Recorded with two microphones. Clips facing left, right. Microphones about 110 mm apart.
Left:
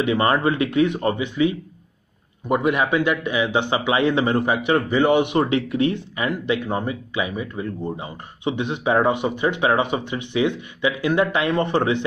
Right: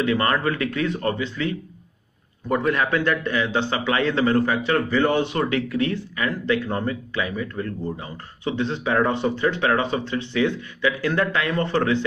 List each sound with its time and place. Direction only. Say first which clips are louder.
0.0 s a man's voice: left 2 dB; 20° left (ahead or behind)